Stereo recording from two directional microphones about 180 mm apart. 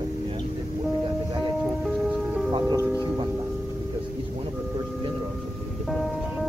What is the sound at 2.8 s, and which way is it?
Speech, 15° left (ahead or behind).